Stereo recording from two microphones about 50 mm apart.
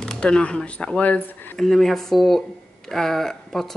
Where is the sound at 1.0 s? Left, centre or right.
Left.